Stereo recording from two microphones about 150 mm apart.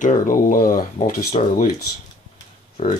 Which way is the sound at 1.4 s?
45° left (ahead or behind).